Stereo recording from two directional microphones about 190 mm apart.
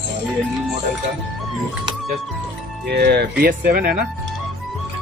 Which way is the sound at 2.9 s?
60° right (ahead or behind).